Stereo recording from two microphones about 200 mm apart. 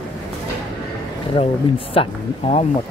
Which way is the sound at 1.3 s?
30° left (ahead or behind).